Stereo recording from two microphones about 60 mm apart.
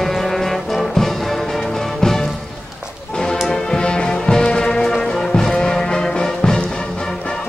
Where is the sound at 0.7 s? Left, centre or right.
Centre.